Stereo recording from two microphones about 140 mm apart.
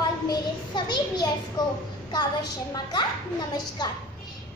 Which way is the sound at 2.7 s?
30° left (ahead or behind).